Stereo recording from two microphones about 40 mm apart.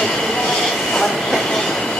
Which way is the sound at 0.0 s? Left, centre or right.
Centre.